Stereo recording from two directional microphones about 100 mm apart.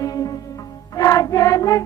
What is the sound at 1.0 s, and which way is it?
Music, 30° left (ahead or behind).